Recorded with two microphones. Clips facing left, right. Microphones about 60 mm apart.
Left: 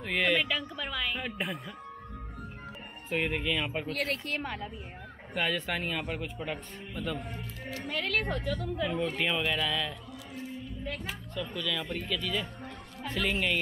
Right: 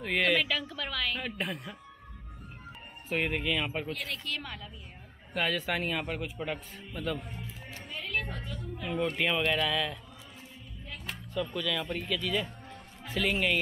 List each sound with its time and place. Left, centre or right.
0.0 s a man's voice: centre
3.1 s a man's voice: centre
4.1 s speech: left
5.3 s a man's voice: centre
7.8 s a woman's voice: left
8.8 s a man's voice: centre
11.5 s a man's voice: centre